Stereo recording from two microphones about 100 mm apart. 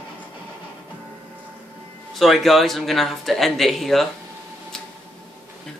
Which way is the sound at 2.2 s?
Centre (ahead or behind).